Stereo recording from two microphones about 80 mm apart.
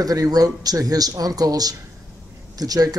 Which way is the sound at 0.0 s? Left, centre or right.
Right.